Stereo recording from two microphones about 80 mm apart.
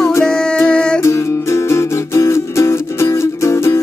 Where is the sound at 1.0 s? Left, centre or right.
Left.